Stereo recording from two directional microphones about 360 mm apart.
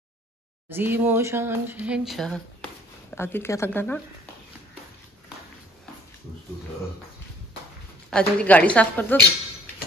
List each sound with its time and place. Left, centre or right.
0.7 s speech: centre
8.1 s speech: centre